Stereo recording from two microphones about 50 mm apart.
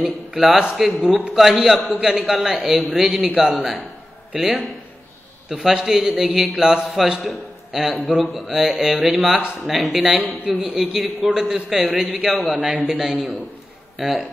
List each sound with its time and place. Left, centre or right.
0.4 s a man's voice: centre
1.0 s a man's voice: centre
1.3 s a man's voice: centre
2.0 s a man's voice: centre
4.3 s a man's voice: centre
8.5 s a man's voice: centre
10.0 s a man's voice: centre